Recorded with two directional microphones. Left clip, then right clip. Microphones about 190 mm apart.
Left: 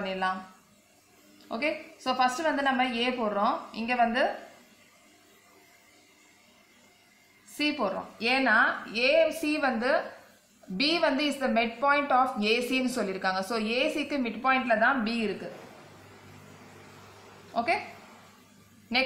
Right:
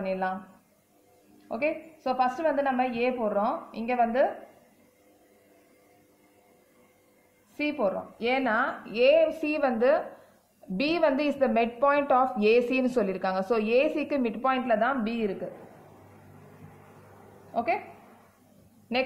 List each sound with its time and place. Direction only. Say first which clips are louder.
0.0 s speech: right 1 dB; 45° right (ahead or behind)
1.5 s a woman's voice: right 1 dB; 45° right (ahead or behind)
7.8 s a woman's voice: right 2 dB; 50° right (ahead or behind)
17.5 s a woman's voice: even; 45° right (ahead or behind)